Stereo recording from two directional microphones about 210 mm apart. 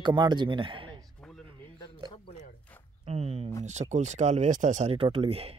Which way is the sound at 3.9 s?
35° right (ahead or behind).